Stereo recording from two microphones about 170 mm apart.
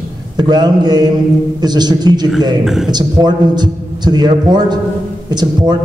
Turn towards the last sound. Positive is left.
turn(degrees=-25)  # may be behind; listen again after turning